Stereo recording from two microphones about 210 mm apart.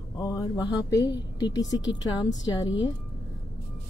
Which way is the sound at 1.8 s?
60° left (ahead or behind).